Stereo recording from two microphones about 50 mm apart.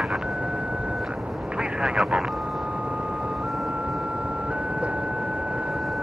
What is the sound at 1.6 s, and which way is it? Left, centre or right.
Speech, centre.